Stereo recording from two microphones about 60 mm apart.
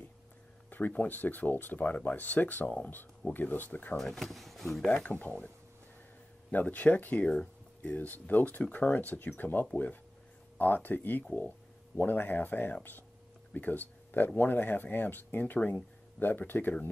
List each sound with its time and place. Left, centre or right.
0.7 s speech: left
3.9 s speech: centre
4.8 s speech: centre
6.5 s speech: left